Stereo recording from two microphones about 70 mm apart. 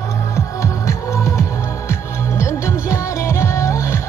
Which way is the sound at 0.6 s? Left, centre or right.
Left.